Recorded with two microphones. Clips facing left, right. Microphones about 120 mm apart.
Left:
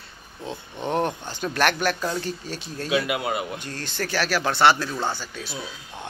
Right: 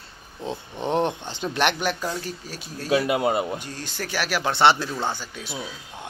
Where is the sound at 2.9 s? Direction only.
35° right (ahead or behind).